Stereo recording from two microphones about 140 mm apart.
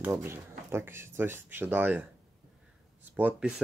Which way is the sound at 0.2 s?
20° right (ahead or behind).